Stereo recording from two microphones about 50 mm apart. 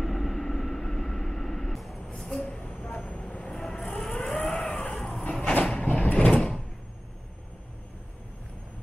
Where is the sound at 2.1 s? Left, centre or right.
Centre.